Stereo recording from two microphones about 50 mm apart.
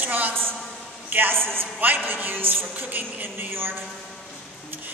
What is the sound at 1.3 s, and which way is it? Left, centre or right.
Speech, centre.